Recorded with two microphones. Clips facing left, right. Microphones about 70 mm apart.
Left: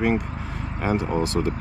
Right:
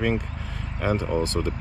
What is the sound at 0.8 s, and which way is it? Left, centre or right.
Speech, centre.